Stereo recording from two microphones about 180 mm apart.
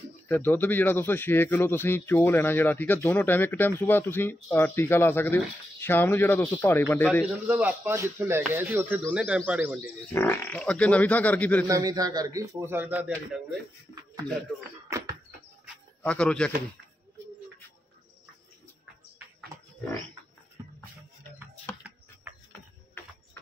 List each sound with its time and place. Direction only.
0.3 s speech: 10° left (ahead or behind)
7.4 s a man's voice: 10° right (ahead or behind)
10.1 s speech: 10° left (ahead or behind)
11.6 s a man's voice: 20° right (ahead or behind)
16.0 s a man's voice: 5° left (ahead or behind)